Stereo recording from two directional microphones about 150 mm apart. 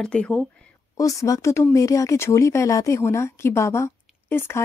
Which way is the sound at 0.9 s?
25° left (ahead or behind).